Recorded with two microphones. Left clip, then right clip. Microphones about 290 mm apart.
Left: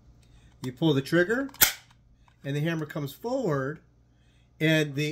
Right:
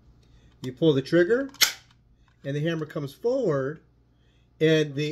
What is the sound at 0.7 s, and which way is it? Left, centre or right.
Speech, centre.